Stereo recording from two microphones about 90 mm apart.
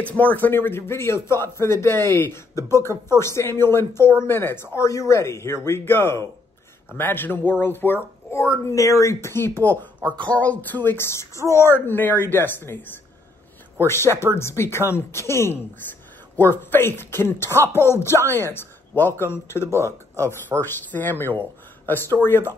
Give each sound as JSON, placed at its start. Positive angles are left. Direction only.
{"t": 0.0, "sound": "speech", "side_deg": 15}
{"t": 13.8, "sound": "speech", "side_deg": 30}